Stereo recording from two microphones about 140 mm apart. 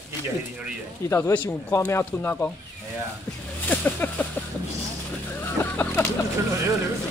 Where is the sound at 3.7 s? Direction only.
10° left (ahead or behind).